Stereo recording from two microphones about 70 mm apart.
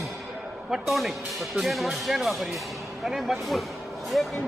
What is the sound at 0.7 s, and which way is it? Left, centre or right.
Speech, centre.